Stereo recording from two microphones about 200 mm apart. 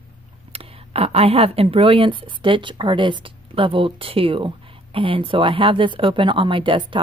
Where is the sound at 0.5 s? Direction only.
30° right (ahead or behind).